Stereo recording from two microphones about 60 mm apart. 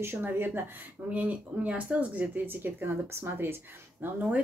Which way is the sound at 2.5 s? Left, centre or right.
Right.